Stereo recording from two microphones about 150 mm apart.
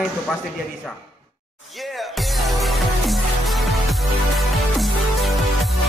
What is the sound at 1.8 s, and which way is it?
Music, centre (ahead or behind).